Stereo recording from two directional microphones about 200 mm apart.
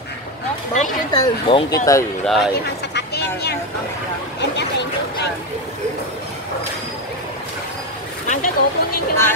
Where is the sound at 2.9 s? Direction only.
55° left (ahead or behind).